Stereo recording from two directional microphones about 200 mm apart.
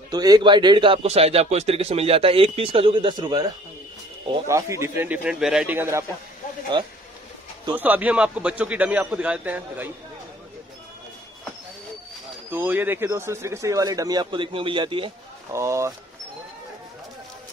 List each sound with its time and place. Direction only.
0.1 s speech: 20° right (ahead or behind)
7.7 s speech: 10° right (ahead or behind)
12.4 s speech: 10° right (ahead or behind); by 15.1 s 25° right (ahead or behind)
15.5 s speech: 15° right (ahead or behind)